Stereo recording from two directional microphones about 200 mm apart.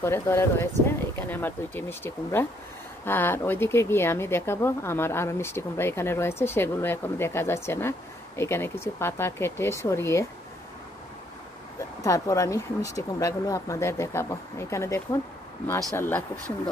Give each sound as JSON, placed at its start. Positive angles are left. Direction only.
{"t": 0.0, "sound": "speech", "side_deg": 10}
{"t": 12.0, "sound": "speech", "side_deg": 15}
{"t": 16.0, "sound": "speech", "side_deg": 10}